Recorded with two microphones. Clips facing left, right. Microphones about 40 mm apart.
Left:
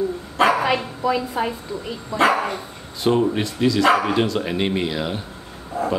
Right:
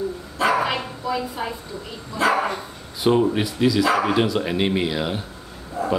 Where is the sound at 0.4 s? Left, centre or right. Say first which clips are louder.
Left 3 dB; left.